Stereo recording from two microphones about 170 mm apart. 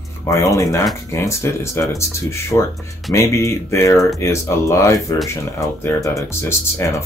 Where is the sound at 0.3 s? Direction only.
20° left (ahead or behind).